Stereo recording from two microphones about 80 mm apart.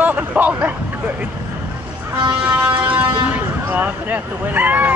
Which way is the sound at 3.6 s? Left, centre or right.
Right.